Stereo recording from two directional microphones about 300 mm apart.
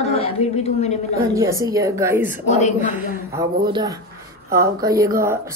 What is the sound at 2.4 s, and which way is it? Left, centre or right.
Speech, left.